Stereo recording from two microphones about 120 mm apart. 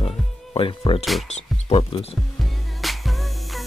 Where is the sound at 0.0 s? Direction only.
55° left (ahead or behind).